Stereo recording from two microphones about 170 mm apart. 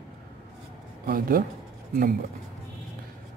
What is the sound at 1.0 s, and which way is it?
Speech, 60° right (ahead or behind).